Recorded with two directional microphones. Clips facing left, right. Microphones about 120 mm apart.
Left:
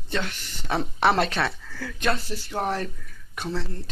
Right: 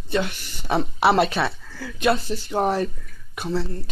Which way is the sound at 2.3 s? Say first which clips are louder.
Right 5 dB; 20° right (ahead or behind).